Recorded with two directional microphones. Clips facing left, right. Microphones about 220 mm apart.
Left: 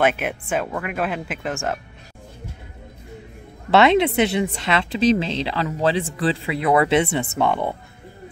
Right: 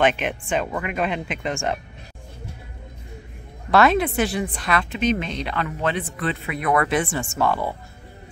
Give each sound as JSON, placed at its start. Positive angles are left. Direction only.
{"t": 0.0, "sound": "speech", "side_deg": 10}
{"t": 3.7, "sound": "a woman's voice", "side_deg": 25}